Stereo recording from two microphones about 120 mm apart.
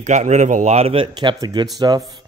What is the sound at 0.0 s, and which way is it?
Speech, 75° right (ahead or behind).